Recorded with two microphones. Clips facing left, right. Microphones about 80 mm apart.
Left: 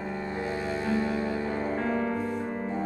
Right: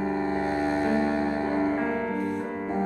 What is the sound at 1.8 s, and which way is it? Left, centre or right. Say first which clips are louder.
Music: right 1 dB; centre.